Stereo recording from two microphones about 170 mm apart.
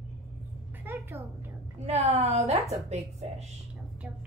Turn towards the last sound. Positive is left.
turn(degrees=-40)  # may be behind; listen again after turning